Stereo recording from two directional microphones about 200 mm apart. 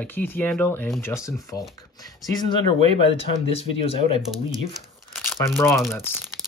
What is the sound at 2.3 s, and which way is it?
Speech, 25° left (ahead or behind).